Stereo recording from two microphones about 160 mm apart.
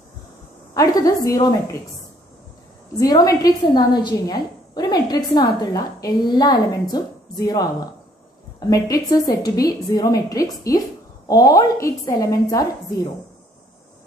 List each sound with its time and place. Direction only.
0.7 s a woman's voice: 20° left (ahead or behind)
3.0 s a woman's voice: 20° left (ahead or behind)